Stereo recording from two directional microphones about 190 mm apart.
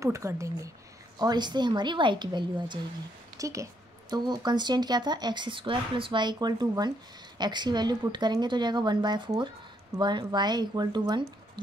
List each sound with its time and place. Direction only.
0.0 s speech: 15° right (ahead or behind)